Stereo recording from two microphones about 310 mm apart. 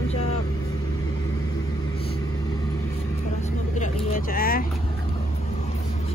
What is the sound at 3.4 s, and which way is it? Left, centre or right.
Vehicle, left.